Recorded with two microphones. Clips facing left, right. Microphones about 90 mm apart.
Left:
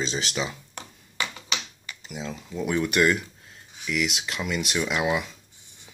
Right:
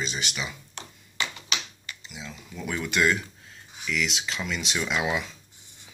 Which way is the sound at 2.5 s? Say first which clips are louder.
Left 4 dB; 20° left (ahead or behind).